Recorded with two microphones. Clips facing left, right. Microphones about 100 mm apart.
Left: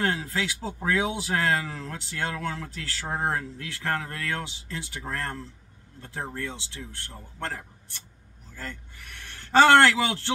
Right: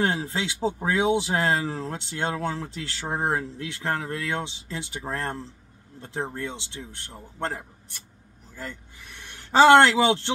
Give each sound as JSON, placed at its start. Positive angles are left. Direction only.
{"t": 0.0, "sound": "a man's voice", "side_deg": -25}